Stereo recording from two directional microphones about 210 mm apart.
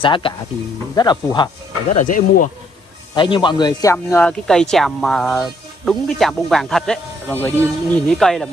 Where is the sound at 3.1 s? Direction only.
20° left (ahead or behind).